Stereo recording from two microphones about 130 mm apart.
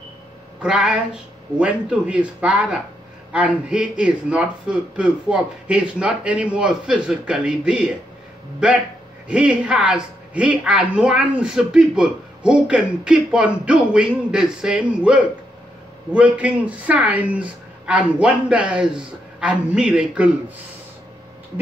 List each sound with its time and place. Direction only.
0.6 s a woman's voice: 10° right (ahead or behind)
9.3 s a woman's voice: 10° right (ahead or behind)